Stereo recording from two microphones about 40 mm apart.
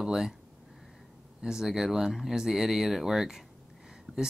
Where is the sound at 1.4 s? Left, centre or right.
Centre.